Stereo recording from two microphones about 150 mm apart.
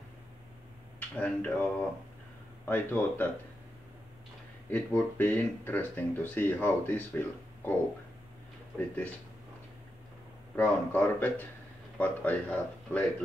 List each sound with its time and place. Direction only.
0.9 s speech: 10° left (ahead or behind)
2.6 s speech: 15° left (ahead or behind)
4.6 s speech: 10° left (ahead or behind)
8.7 s speech: 10° left (ahead or behind)
10.5 s speech: 10° left (ahead or behind)